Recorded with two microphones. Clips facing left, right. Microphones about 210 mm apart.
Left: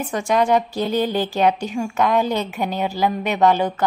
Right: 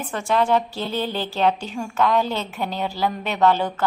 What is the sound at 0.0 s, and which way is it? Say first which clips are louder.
A woman's voice: left 3 dB; 15° left (ahead or behind).